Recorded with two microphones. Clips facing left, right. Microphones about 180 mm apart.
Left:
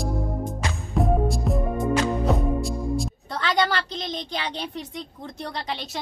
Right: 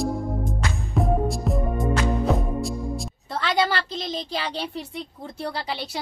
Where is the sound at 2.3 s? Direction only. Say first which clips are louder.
Left 1 dB; centre (ahead or behind).